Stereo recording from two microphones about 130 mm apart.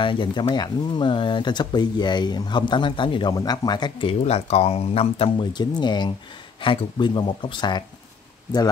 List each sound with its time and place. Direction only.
0.0 s speech: 40° left (ahead or behind)
5.5 s speech: 35° left (ahead or behind)